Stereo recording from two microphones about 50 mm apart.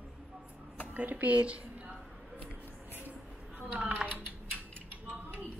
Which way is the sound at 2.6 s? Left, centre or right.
Left.